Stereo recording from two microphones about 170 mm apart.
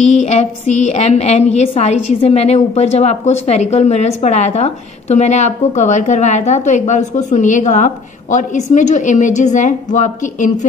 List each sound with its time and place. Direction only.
0.0 s a woman's voice: 40° left (ahead or behind)